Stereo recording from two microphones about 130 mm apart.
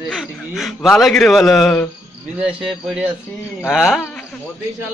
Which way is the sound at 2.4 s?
5° right (ahead or behind).